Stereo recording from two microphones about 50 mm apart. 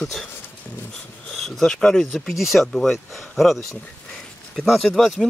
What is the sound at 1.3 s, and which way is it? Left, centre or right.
Speech, centre.